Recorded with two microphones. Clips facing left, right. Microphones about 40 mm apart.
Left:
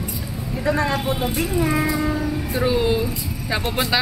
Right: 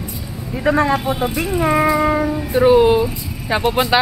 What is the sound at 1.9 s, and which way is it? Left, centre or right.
Child singing, right.